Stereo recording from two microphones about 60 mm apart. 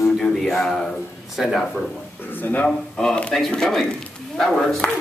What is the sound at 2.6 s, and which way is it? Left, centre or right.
Speech, centre.